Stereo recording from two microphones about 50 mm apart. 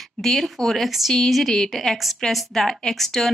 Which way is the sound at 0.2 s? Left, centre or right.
Centre.